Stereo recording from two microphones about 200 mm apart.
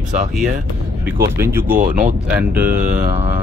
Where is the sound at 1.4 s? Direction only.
10° right (ahead or behind).